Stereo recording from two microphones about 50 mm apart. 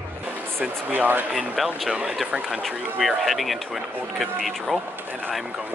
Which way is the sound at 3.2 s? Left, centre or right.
Centre.